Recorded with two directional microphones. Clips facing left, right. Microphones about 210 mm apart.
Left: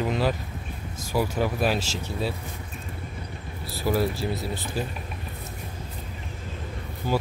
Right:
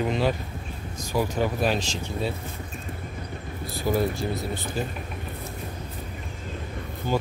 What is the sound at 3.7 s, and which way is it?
Speech, centre (ahead or behind).